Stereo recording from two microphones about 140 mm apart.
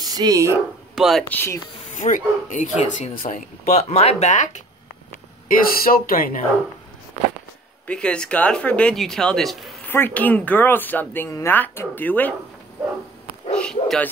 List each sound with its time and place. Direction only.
0.0 s speech: 25° right (ahead or behind)
0.9 s speech: centre (ahead or behind)
1.3 s speech: 15° left (ahead or behind)
1.9 s speech: 65° left (ahead or behind)
5.5 s speech: 90° left
7.8 s speech: 10° left (ahead or behind)
9.8 s speech: 15° left (ahead or behind)
13.6 s bow-wow: 5° left (ahead or behind)